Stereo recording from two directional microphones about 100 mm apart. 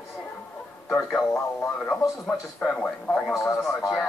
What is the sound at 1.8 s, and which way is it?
Speech, 10° left (ahead or behind).